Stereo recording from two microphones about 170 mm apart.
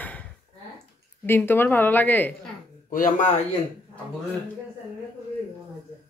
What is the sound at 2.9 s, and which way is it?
Speech, 55° left (ahead or behind).